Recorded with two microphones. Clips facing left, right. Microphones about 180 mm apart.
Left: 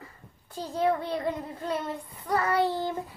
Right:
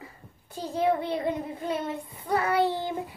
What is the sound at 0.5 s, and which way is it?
A child's voice, 20° right (ahead or behind).